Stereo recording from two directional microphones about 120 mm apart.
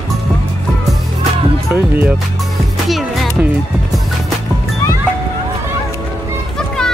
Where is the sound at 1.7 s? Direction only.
15° right (ahead or behind).